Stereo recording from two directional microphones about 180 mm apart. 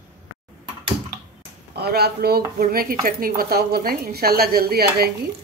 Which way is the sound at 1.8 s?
65° right (ahead or behind).